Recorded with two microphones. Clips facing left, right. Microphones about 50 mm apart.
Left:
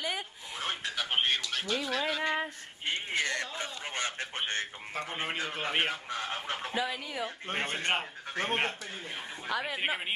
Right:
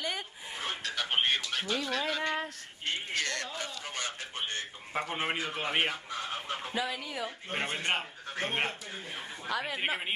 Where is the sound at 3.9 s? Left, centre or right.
Left.